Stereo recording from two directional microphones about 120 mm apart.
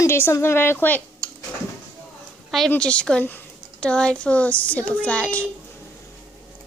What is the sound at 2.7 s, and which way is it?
A child's voice, 10° left (ahead or behind).